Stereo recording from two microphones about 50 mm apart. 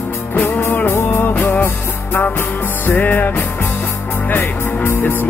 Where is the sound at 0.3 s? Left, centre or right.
Left.